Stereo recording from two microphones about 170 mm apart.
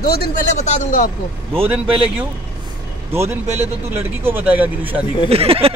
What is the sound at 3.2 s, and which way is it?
Speech, 40° right (ahead or behind).